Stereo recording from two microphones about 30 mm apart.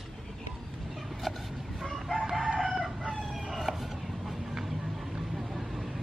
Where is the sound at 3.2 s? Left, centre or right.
Centre.